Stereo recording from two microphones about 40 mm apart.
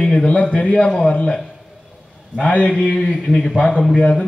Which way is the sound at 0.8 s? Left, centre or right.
Centre.